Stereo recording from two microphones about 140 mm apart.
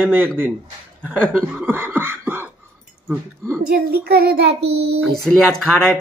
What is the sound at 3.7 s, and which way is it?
Child singing, 90° right.